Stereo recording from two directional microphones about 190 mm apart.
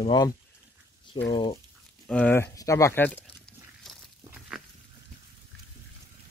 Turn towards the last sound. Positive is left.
turn(degrees=-5)  # may be behind; listen again after turning